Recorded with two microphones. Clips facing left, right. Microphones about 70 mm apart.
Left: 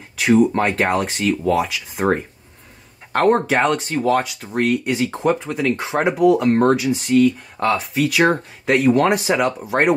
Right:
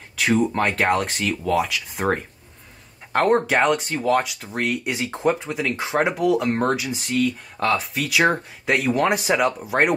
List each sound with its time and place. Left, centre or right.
0.1 s speech: centre